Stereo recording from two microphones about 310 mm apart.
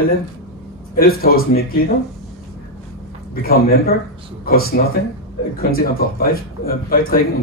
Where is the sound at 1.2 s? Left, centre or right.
Left.